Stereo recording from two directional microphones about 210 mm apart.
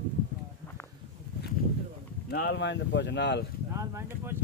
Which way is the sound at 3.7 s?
15° right (ahead or behind).